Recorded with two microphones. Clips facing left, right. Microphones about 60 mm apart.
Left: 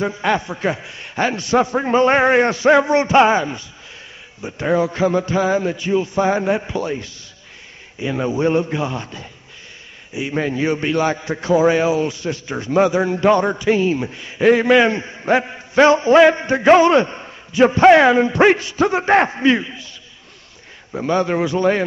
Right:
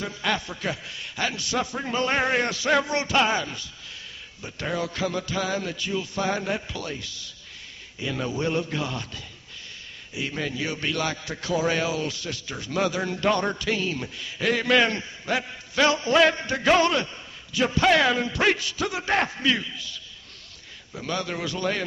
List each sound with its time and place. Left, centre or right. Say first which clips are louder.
0.0 s a man's voice: left 9 dB; left
10.3 s a man's voice: left 12 dB; left
15.0 s a man's voice: left 10 dB; left
16.9 s a man's voice: left 11 dB; left